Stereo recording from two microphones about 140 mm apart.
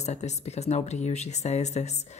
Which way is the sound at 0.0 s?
55° left (ahead or behind).